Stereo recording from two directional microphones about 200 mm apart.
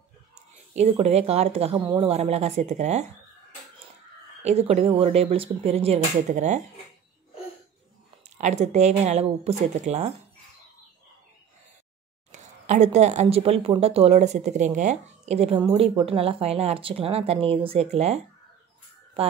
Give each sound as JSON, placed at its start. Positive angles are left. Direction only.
{"t": 0.7, "sound": "speech", "side_deg": -35}
{"t": 4.4, "sound": "speech", "side_deg": -30}
{"t": 8.4, "sound": "speech", "side_deg": -35}
{"t": 12.3, "sound": "speech", "side_deg": -35}